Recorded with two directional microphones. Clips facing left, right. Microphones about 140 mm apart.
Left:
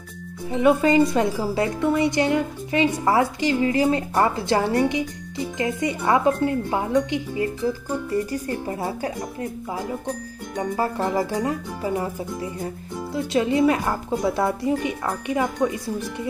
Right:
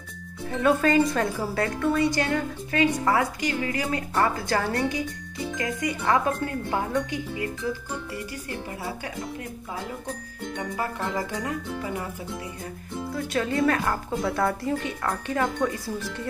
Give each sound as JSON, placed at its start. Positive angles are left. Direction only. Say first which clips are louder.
{"t": 0.5, "sound": "speech", "louder": "left 4 dB", "side_deg": 15}
{"t": 8.1, "sound": "speech", "louder": "left 9 dB", "side_deg": 40}
{"t": 10.5, "sound": "speech", "louder": "left 6 dB", "side_deg": 35}
{"t": 13.1, "sound": "speech", "louder": "left 5 dB", "side_deg": 20}